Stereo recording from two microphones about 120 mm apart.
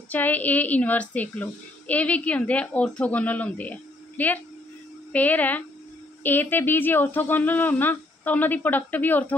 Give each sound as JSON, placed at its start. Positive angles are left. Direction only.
{"t": 0.1, "sound": "a child's voice", "side_deg": 15}